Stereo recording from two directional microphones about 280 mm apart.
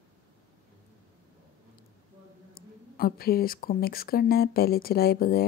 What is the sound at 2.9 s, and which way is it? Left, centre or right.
Speech, left.